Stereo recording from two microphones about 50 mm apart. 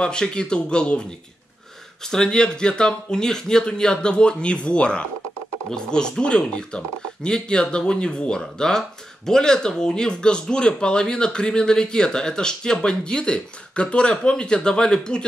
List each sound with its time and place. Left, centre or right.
0.0 s speech: centre
2.0 s speech: centre